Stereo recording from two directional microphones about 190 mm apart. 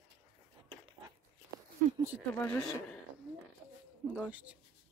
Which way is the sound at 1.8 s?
40° right (ahead or behind).